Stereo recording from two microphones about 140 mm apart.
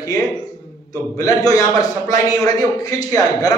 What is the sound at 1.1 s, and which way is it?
A man's voice, 25° left (ahead or behind).